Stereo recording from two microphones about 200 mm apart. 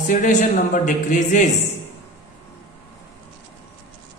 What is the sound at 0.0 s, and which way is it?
Speech, 40° left (ahead or behind).